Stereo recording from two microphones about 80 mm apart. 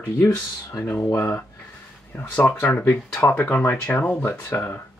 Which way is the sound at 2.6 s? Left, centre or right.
Left.